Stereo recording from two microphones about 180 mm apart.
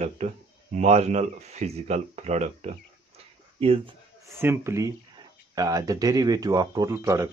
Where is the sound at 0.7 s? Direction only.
40° right (ahead or behind).